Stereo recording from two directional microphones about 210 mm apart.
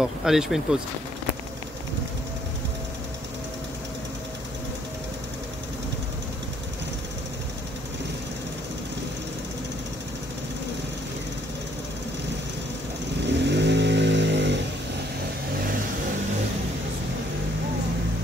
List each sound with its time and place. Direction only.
0.0 s speech: centre (ahead or behind)
13.3 s vehicle: 55° right (ahead or behind)